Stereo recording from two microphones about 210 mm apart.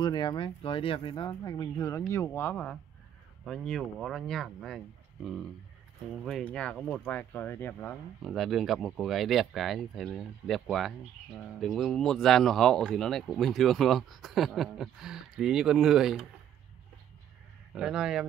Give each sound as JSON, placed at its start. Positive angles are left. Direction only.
{"t": 0.0, "sound": "speech", "side_deg": 20}
{"t": 17.7, "sound": "speech", "side_deg": -5}